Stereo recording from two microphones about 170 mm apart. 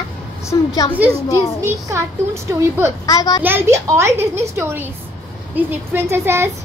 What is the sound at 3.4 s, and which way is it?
Speech, 15° right (ahead or behind).